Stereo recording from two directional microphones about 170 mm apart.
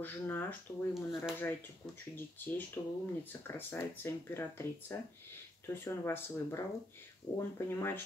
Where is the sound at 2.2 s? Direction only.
10° left (ahead or behind).